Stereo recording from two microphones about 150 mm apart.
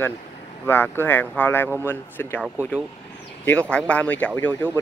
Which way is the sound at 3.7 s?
10° left (ahead or behind).